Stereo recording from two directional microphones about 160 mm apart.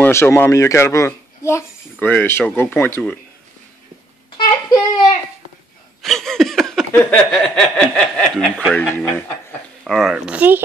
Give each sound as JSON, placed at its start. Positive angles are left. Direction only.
{"t": 0.0, "sound": "a child's voice", "side_deg": 15}
{"t": 4.4, "sound": "a child's voice", "side_deg": 25}
{"t": 6.0, "sound": "a sound", "side_deg": 0}
{"t": 6.9, "sound": "a child's voice", "side_deg": 5}
{"t": 9.8, "sound": "speech", "side_deg": 0}